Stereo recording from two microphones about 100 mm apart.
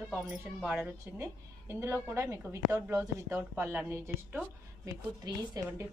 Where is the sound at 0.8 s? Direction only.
25° right (ahead or behind).